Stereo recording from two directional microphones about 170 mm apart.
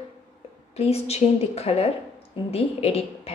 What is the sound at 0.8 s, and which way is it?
Speech, 35° left (ahead or behind).